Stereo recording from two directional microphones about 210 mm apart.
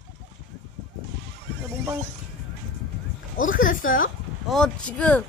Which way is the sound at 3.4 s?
40° left (ahead or behind).